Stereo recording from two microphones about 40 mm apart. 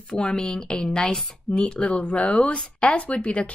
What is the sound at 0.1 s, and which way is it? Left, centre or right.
Speech, left.